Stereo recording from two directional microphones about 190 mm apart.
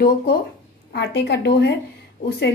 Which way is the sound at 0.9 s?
60° left (ahead or behind).